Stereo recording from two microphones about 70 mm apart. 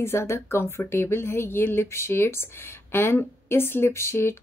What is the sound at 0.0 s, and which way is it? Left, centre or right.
Speech, left.